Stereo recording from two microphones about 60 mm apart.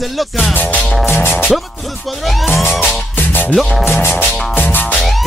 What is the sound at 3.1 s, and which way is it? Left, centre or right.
Music, left.